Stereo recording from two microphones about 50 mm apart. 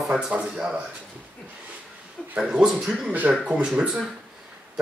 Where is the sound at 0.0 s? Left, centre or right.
Centre.